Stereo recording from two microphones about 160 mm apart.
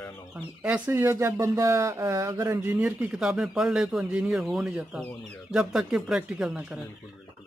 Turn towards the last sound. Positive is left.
turn(degrees=-5)  # may be behind; listen again after turning